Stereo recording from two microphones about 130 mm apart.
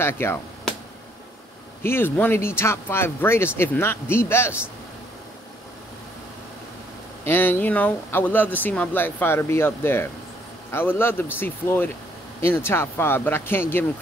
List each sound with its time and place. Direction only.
0.0 s speech: 20° left (ahead or behind)
1.8 s speech: 15° left (ahead or behind)
7.2 s speech: 15° left (ahead or behind)